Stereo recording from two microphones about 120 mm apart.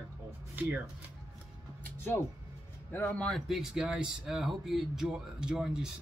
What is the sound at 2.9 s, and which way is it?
Speech, 20° left (ahead or behind).